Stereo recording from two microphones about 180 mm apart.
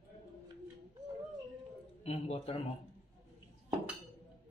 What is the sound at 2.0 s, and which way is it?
Speech, 35° left (ahead or behind).